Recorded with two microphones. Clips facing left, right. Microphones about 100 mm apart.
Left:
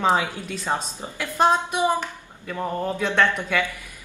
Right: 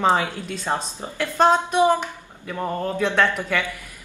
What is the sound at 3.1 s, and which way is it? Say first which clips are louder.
Speech: left 2 dB; 5° right (ahead or behind).